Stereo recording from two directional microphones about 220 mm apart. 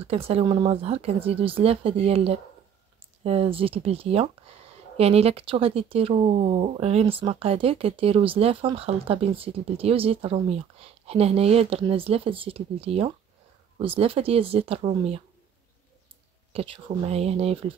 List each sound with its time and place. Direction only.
0.0 s speech: 25° right (ahead or behind)
16.5 s speech: 25° right (ahead or behind)